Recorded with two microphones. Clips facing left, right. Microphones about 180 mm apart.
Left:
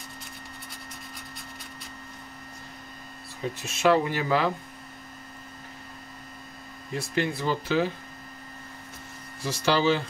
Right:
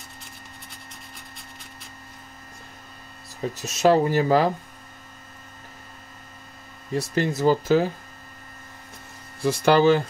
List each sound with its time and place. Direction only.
3.5 s speech: 40° right (ahead or behind)
7.0 s speech: 40° right (ahead or behind)
9.4 s speech: 55° right (ahead or behind)